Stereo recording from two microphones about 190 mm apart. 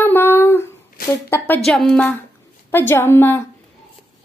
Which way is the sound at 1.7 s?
5° left (ahead or behind).